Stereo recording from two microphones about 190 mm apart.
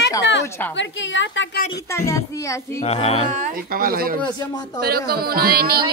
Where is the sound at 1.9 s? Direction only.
15° left (ahead or behind).